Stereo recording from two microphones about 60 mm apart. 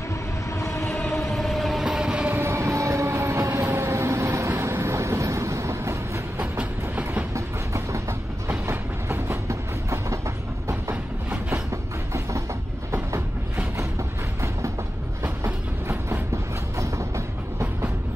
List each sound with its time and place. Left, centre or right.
0.6 s train: left
1.3 s vehicle: centre
2.4 s train: right
3.7 s vehicle: right
6.6 s train: right
7.3 s train: right
8.5 s train: right
9.5 s train: right
11.7 s train: right
13.7 s train: right